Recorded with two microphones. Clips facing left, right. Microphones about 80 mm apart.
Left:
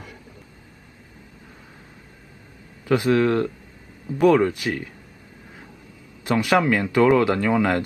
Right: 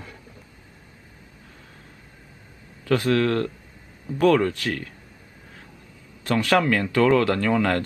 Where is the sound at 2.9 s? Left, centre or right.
Centre.